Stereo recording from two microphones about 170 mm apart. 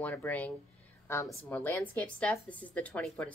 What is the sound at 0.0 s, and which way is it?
A woman's voice, 10° left (ahead or behind).